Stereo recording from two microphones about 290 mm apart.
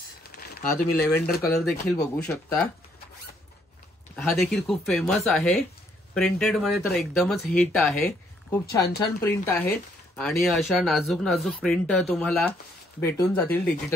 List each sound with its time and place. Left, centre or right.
0.4 s a sound: left
0.9 s speech: centre
4.1 s speech: centre
9.2 s speech: centre